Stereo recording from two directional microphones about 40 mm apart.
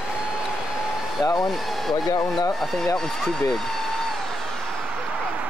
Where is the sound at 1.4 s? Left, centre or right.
Centre.